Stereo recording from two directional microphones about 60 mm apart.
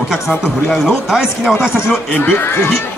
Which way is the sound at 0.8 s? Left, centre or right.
Centre.